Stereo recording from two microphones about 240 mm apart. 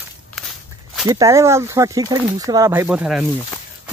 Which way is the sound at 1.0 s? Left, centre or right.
Centre.